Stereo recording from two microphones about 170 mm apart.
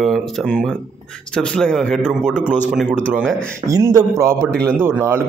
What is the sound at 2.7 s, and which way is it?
Speech, centre (ahead or behind).